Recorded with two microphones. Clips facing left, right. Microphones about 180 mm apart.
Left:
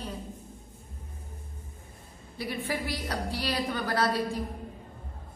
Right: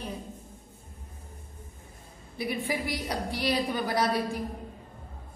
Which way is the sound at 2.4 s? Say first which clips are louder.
Right 2 dB; 15° right (ahead or behind).